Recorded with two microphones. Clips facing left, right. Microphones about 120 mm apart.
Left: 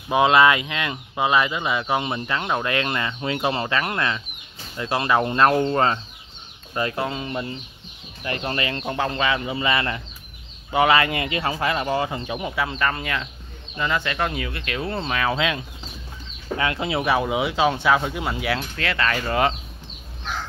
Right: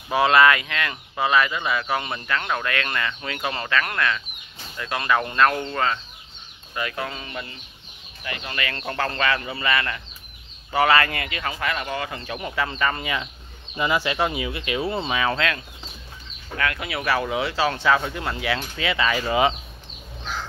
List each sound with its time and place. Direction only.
0.1 s speech: 20° left (ahead or behind)
8.2 s speech: 35° left (ahead or behind)
8.6 s speech: 15° left (ahead or behind)
12.2 s speech: 15° left (ahead or behind); by 15.3 s 5° right (ahead or behind)
15.3 s speech: 15° left (ahead or behind)
16.5 s speech: 25° left (ahead or behind); by 18.7 s 5° left (ahead or behind)
18.8 s speech: 5° right (ahead or behind)